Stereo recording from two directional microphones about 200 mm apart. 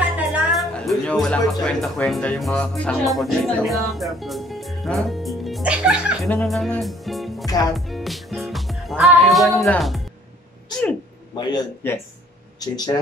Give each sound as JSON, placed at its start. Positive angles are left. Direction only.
{"t": 0.1, "sound": "speech", "side_deg": -5}
{"t": 6.3, "sound": "music", "side_deg": 0}
{"t": 11.8, "sound": "speech", "side_deg": 10}